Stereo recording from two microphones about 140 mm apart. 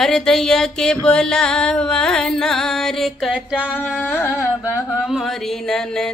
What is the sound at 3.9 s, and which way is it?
Carnatic music, 10° left (ahead or behind).